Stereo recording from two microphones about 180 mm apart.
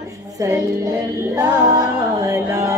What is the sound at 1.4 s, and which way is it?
Music, 20° right (ahead or behind).